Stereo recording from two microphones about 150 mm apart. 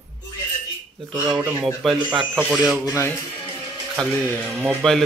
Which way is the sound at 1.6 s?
Centre (ahead or behind).